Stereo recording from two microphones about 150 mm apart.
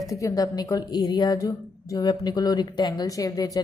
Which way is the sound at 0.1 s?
25° left (ahead or behind).